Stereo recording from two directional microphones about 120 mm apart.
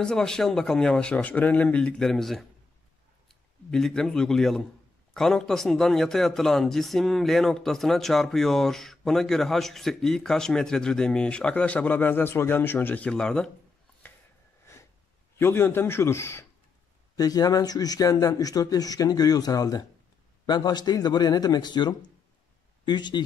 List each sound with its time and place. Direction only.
0.0 s a man's voice: 5° left (ahead or behind)
15.3 s a man's voice: 20° left (ahead or behind); by 23.2 s 40° left (ahead or behind)